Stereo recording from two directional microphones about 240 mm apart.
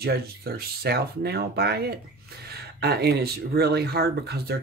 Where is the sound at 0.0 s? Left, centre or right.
Right.